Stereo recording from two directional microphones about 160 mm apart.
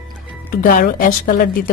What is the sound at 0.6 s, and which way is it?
Speech, 65° left (ahead or behind).